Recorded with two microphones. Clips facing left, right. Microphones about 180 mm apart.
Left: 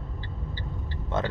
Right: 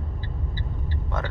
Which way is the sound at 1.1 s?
25° left (ahead or behind).